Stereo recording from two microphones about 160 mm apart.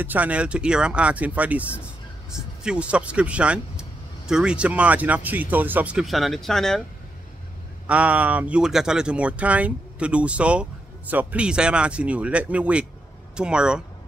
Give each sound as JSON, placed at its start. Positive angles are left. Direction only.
{"t": 0.0, "sound": "speech", "side_deg": -10}
{"t": 7.8, "sound": "speech", "side_deg": -10}